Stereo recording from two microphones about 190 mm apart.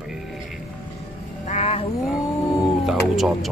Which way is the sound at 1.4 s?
35° left (ahead or behind).